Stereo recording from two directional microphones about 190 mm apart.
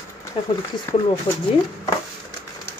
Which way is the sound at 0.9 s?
15° left (ahead or behind).